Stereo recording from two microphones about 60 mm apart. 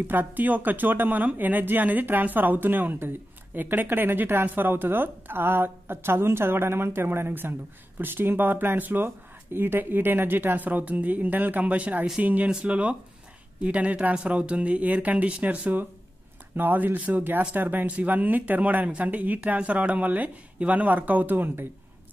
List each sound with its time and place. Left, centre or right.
0.0 s speech: right
12.4 s speech: centre; by 21.6 s right